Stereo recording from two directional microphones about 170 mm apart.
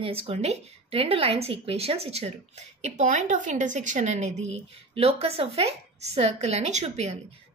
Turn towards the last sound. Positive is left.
turn(degrees=-40)  # may be behind; listen again after turning